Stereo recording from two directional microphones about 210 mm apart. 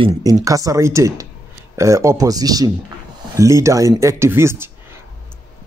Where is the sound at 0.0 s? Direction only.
15° right (ahead or behind).